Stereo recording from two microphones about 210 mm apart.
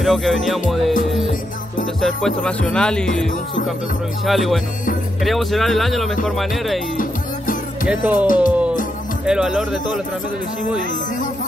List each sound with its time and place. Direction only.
0.0 s speech: centre (ahead or behind)
2.0 s speech: centre (ahead or behind)
4.3 s speech: centre (ahead or behind)
7.0 s music: 40° left (ahead or behind)
7.9 s speech: 10° right (ahead or behind)
8.4 s music: 5° right (ahead or behind)
9.2 s speech: 5° right (ahead or behind)